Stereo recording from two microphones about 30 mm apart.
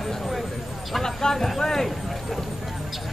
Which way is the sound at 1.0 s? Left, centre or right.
Centre.